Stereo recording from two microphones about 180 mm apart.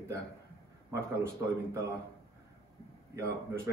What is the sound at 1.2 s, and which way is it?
Speech, 15° right (ahead or behind).